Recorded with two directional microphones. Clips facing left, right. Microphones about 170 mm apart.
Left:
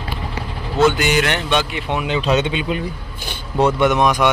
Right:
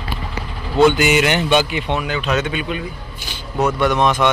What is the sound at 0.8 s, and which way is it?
Speech, 5° right (ahead or behind).